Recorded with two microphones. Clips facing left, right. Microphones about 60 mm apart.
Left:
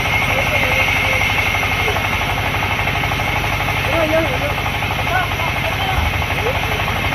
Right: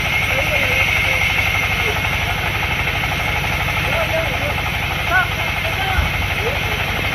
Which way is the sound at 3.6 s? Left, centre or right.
Centre.